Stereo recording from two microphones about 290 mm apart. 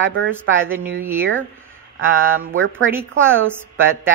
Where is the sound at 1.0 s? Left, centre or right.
Centre.